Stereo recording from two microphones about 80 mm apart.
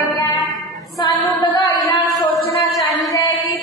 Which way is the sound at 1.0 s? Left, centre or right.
Left.